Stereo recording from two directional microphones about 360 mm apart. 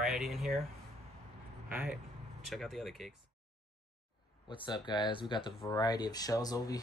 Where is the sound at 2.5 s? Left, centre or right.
Centre.